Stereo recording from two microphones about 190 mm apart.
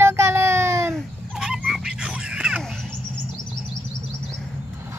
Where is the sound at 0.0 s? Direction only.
15° right (ahead or behind).